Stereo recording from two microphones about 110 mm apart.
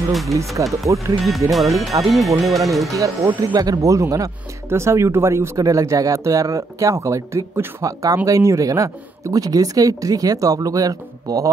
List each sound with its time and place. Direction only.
0.9 s speech: centre (ahead or behind)
2.9 s speech: 30° right (ahead or behind)